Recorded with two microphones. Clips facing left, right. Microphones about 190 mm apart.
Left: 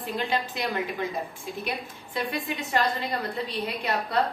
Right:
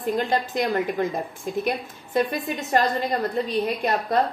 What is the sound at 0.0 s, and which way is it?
A woman's voice, 45° right (ahead or behind).